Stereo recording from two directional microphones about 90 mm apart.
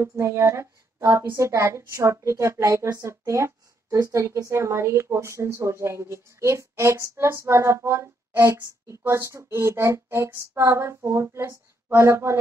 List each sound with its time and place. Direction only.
0.0 s a woman's voice: 30° right (ahead or behind)